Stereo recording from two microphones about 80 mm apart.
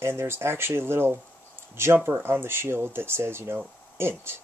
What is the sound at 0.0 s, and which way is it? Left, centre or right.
Speech, right.